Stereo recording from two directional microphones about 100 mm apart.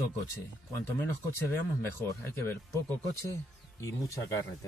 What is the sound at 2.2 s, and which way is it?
Speech, 25° left (ahead or behind).